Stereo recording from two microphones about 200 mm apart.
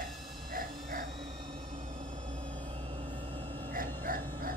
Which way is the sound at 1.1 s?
25° right (ahead or behind).